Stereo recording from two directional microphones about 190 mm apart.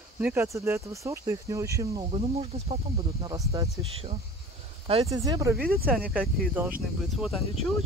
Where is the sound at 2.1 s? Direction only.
30° right (ahead or behind).